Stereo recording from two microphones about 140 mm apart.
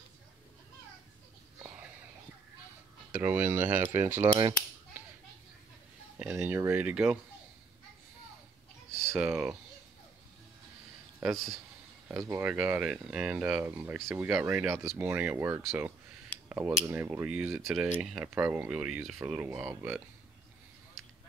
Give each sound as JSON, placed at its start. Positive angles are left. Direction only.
{"t": 3.1, "sound": "speech", "side_deg": -15}
{"t": 4.4, "sound": "cutlery", "side_deg": -20}
{"t": 6.3, "sound": "speech", "side_deg": -20}
{"t": 9.2, "sound": "speech", "side_deg": -5}
{"t": 11.3, "sound": "speech", "side_deg": 0}
{"t": 12.1, "sound": "speech", "side_deg": -15}